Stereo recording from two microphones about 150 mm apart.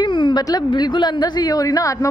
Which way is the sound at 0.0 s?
30° left (ahead or behind).